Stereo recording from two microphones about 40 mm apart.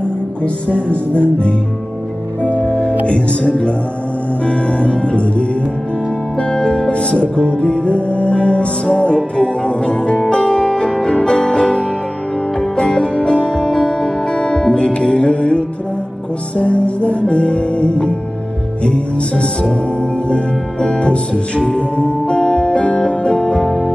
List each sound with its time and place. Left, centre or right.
0.7 s music: left
6.5 s music: left